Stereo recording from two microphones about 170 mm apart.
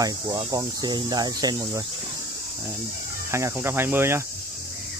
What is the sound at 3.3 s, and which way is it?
Speech, 15° right (ahead or behind).